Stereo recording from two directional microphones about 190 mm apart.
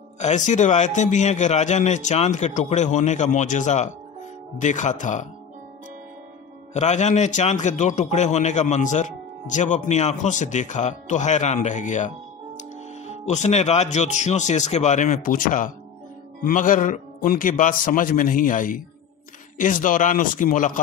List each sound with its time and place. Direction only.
0.2 s a man's voice: 40° left (ahead or behind)
6.7 s a man's voice: 35° left (ahead or behind)
13.2 s a man's voice: 35° left (ahead or behind)